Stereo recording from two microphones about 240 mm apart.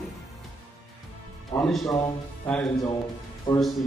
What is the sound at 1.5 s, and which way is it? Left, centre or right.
A man's voice, centre.